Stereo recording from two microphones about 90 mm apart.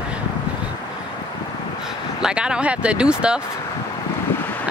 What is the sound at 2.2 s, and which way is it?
Speech, 10° right (ahead or behind).